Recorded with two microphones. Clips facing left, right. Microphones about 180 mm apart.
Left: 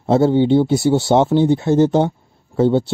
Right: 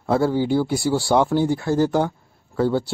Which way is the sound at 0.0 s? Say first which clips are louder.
Left 6 dB; 25° left (ahead or behind).